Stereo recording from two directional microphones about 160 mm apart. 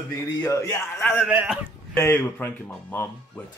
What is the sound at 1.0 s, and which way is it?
Speech, 5° left (ahead or behind).